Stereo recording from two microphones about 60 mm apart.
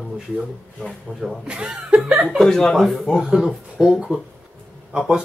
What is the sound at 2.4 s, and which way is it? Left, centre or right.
Speech, centre.